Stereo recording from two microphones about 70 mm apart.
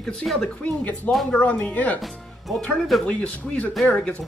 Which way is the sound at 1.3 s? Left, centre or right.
Left.